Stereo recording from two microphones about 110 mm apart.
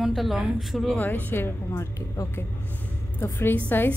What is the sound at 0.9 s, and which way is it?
A woman's voice, 15° left (ahead or behind).